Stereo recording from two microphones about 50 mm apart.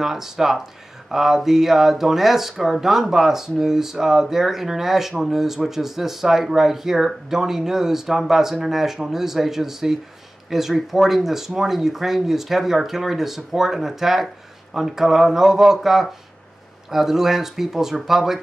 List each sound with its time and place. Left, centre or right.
0.0 s speech: centre